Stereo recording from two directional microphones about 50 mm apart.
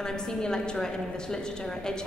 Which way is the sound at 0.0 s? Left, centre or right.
Centre.